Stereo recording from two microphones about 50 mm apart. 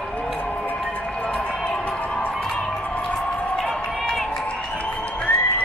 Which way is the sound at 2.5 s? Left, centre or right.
Left.